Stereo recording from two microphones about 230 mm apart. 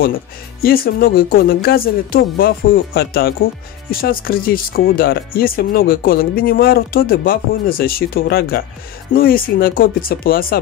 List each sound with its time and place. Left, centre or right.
0.6 s speech: left